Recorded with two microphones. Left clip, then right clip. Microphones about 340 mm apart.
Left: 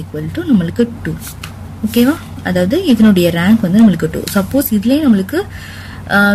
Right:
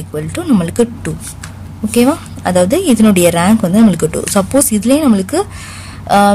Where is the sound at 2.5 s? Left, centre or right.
Right.